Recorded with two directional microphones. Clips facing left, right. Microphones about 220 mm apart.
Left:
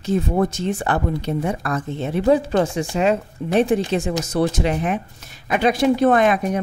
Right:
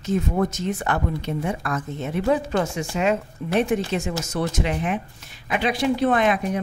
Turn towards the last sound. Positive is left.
turn(degrees=45)  # may be behind; listen again after turning